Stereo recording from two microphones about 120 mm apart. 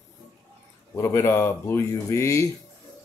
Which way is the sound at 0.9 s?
25° left (ahead or behind).